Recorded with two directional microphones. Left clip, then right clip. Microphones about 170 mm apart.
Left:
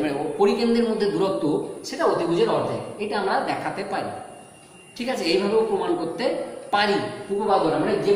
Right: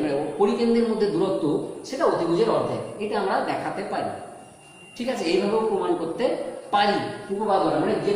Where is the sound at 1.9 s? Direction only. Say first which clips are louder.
Even; 10° left (ahead or behind).